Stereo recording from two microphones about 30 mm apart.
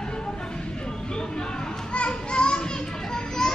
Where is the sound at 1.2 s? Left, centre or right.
Left.